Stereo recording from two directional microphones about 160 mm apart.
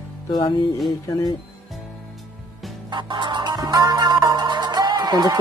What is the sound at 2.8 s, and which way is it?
Music, 30° right (ahead or behind).